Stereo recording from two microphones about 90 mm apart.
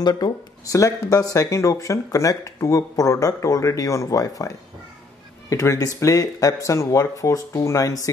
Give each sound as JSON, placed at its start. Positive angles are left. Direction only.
{"t": 0.0, "sound": "speech", "side_deg": 50}